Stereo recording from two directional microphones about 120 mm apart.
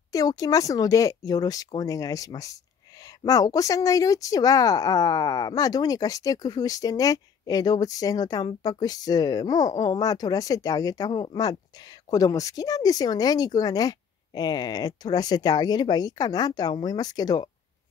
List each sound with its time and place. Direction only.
0.1 s speech: 30° left (ahead or behind)